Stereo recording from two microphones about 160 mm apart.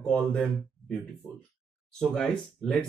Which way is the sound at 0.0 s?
5° left (ahead or behind).